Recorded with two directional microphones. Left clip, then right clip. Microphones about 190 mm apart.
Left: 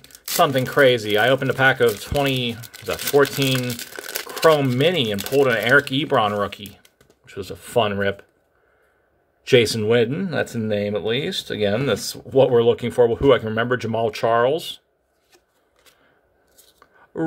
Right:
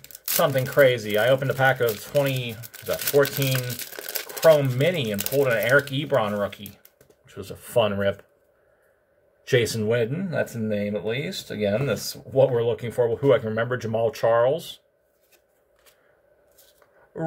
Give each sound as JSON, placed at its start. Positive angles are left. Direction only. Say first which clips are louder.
{"t": 0.4, "sound": "speech", "louder": "left 3 dB", "side_deg": 50}
{"t": 3.5, "sound": "crumpling", "louder": "left 5 dB", "side_deg": 20}
{"t": 4.5, "sound": "speech", "louder": "left 1 dB", "side_deg": 50}
{"t": 7.2, "sound": "speech", "louder": "left 6 dB", "side_deg": 40}
{"t": 9.4, "sound": "speech", "louder": "left 6 dB", "side_deg": 40}